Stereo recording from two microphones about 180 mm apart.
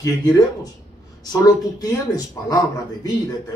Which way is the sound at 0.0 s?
20° left (ahead or behind).